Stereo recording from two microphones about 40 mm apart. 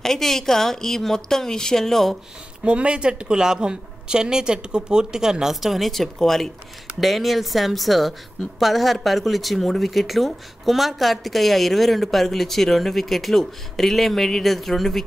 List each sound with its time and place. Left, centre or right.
0.0 s a woman's voice: centre
2.6 s speech: right; by 5.9 s centre
5.9 s a woman's voice: centre